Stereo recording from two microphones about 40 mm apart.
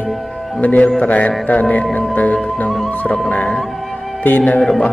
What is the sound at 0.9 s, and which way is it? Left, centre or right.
Music, left.